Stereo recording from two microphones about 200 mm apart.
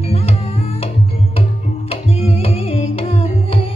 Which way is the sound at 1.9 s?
30° left (ahead or behind).